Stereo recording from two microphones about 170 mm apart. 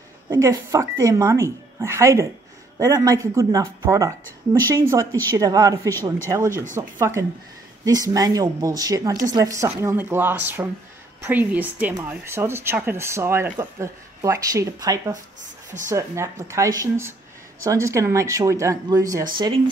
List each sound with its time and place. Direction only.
0.3 s speech: 15° right (ahead or behind)